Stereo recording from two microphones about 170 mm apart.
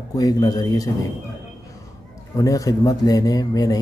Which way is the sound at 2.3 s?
20° left (ahead or behind).